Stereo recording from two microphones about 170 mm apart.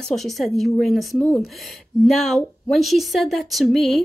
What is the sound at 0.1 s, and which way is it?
Speech, centre (ahead or behind).